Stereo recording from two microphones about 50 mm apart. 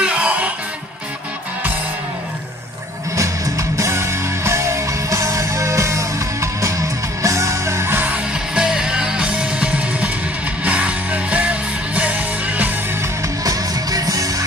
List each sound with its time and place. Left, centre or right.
0.0 s music: right
3.2 s music: right
8.1 s music: centre